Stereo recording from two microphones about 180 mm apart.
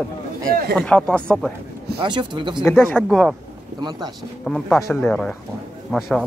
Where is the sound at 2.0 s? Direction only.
25° right (ahead or behind).